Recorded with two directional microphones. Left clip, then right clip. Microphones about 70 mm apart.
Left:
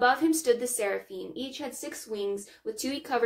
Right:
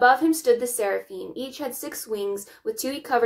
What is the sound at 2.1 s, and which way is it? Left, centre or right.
Speech, right.